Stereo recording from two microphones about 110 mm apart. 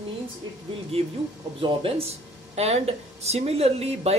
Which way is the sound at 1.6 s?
55° right (ahead or behind).